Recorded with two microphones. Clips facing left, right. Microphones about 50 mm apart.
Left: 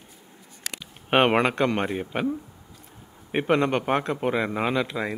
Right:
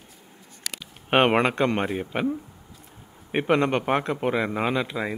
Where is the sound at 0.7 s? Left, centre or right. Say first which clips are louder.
Even; left.